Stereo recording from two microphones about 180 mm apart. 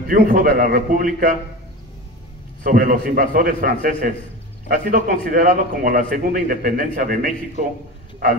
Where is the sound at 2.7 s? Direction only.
50° right (ahead or behind).